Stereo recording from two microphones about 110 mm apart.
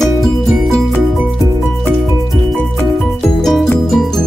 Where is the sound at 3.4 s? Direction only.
5° left (ahead or behind).